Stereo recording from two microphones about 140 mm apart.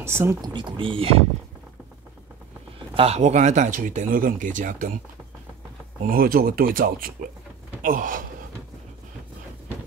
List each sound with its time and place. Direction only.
0.0 s speech: 20° right (ahead or behind)
0.5 s speech: 35° right (ahead or behind)
2.9 s speech: 45° right (ahead or behind); by 4.9 s 70° right (ahead or behind)
6.0 s speech: 90° right
7.8 s gasp: 80° right